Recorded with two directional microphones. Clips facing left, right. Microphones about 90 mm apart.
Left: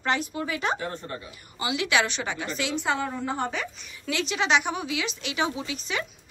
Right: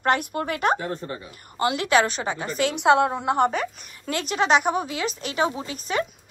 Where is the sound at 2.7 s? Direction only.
75° right (ahead or behind).